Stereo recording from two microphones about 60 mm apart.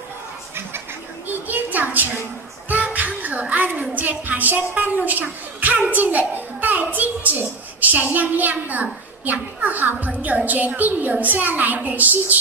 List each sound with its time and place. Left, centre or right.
0.6 s a sound: right
2.7 s music: right
3.9 s a child's voice: right